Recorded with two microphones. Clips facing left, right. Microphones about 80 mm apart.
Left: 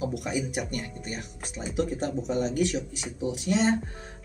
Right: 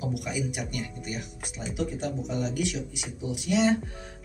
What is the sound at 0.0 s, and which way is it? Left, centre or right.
Speech, left.